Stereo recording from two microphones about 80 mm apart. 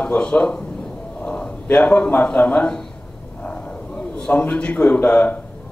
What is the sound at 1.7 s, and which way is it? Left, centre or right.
Speech, centre.